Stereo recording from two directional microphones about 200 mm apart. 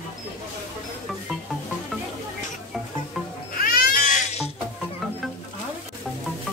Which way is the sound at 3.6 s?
45° left (ahead or behind).